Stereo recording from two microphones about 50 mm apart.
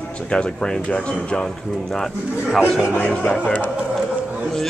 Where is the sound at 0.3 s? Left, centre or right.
Left.